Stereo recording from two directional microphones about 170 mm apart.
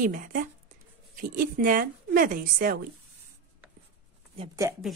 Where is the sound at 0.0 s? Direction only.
55° right (ahead or behind).